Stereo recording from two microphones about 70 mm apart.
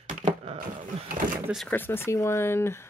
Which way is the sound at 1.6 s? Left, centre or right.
Left.